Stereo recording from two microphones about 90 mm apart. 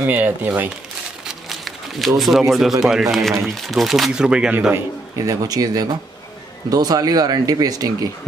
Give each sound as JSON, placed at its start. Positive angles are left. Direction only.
{"t": 0.0, "sound": "speech", "side_deg": -20}
{"t": 1.2, "sound": "crumpling", "side_deg": 0}
{"t": 2.8, "sound": "speech", "side_deg": -5}
{"t": 5.1, "sound": "speech", "side_deg": -40}